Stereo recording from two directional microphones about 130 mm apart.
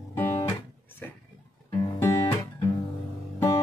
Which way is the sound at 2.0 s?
20° left (ahead or behind).